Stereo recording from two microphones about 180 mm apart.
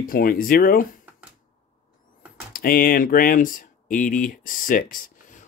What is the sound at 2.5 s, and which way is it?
Speech, 55° left (ahead or behind).